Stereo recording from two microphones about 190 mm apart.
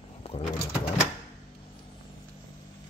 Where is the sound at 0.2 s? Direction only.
30° left (ahead or behind).